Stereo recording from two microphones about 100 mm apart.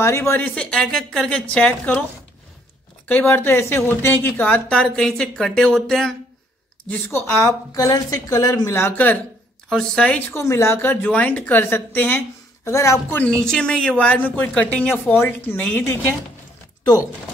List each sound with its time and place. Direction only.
0.0 s a woman's voice: 25° left (ahead or behind)
0.4 s a woman's voice: 15° left (ahead or behind)
3.1 s a woman's voice: 20° left (ahead or behind)
6.9 s speech: 25° left (ahead or behind)
8.8 s a woman's voice: 15° left (ahead or behind)
9.7 s a woman's voice: 5° left (ahead or behind)
10.3 s a woman's voice: 25° left (ahead or behind)
13.2 s a woman's voice: 5° left (ahead or behind)